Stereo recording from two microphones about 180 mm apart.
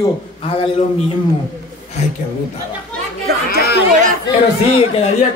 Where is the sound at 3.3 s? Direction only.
60° right (ahead or behind).